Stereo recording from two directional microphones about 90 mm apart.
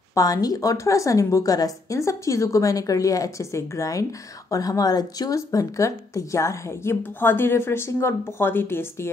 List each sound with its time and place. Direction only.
0.1 s speech: 40° left (ahead or behind); by 9.1 s 25° left (ahead or behind)